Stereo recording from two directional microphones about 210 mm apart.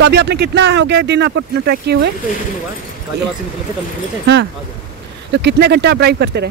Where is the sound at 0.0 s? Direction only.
50° right (ahead or behind).